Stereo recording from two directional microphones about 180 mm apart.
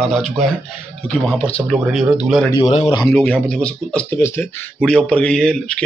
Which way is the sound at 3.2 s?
5° left (ahead or behind).